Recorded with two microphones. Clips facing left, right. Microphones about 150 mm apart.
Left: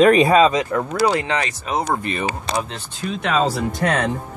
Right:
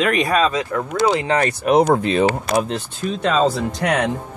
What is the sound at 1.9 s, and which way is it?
Speech, 90° right.